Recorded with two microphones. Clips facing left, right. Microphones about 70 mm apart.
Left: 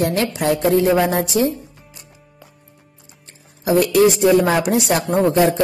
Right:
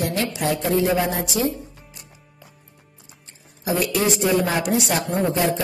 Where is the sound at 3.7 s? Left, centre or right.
Left.